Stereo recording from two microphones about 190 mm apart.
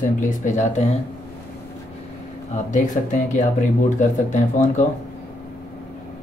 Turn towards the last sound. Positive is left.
turn(degrees=40)  # may be behind; listen again after turning